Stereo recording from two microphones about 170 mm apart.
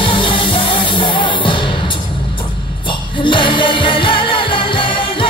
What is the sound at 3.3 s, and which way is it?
Music, 30° left (ahead or behind).